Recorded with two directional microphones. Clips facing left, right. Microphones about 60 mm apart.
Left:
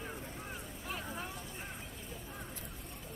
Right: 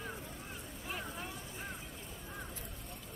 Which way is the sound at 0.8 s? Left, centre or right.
Centre.